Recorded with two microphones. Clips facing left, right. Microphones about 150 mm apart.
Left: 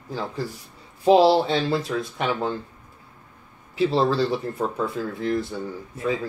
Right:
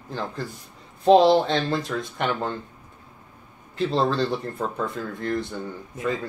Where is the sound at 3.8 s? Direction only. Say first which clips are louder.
Left 2 dB; 5° left (ahead or behind).